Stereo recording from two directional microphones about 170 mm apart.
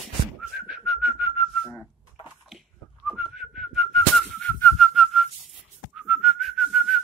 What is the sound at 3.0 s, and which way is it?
Whistling, 5° right (ahead or behind).